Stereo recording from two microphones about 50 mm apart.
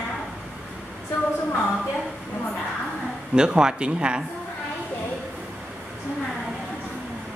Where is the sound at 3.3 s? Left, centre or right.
Centre.